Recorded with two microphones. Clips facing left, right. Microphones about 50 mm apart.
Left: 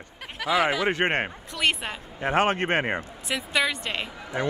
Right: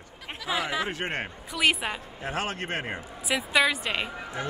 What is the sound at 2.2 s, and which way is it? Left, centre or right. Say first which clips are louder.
Speech: left 10 dB; left.